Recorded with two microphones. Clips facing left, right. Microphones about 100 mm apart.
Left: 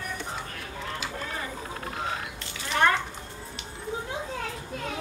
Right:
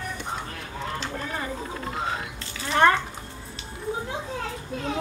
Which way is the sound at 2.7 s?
35° right (ahead or behind).